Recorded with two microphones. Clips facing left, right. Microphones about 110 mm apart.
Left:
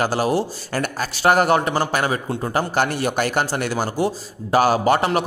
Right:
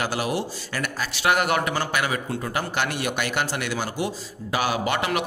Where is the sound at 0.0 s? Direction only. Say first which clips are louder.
Left 6 dB; 40° left (ahead or behind).